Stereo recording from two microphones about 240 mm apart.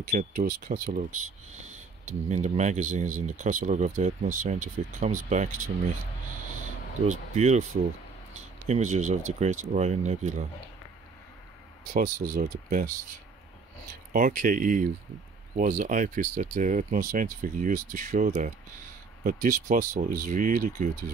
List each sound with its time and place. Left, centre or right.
0.1 s speech: right
7.1 s speech: right
11.9 s speech: right
14.1 s speech: right